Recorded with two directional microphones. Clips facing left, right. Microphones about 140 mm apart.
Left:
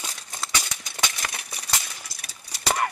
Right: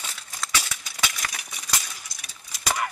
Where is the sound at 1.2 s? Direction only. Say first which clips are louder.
Left 1 dB; 35° left (ahead or behind).